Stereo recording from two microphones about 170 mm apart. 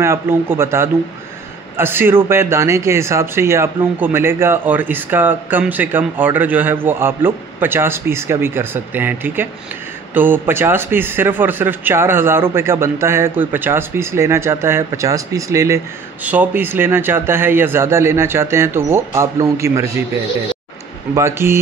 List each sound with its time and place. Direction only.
0.0 s speech: 15° right (ahead or behind)
21.1 s speech: 15° right (ahead or behind)